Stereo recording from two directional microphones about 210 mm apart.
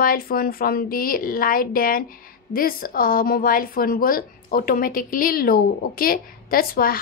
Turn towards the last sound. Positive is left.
turn(degrees=45)  # may be behind; listen again after turning